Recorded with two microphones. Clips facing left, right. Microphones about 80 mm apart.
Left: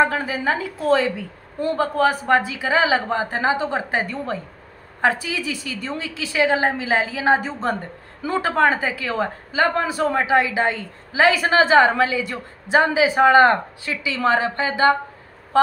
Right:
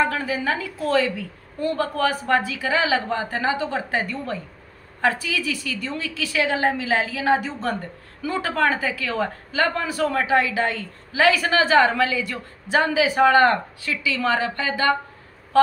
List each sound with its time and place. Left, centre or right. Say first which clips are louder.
0.0 s a woman's voice: left 3 dB; left